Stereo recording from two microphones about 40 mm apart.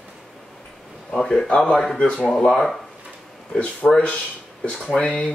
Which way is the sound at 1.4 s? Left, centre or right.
Left.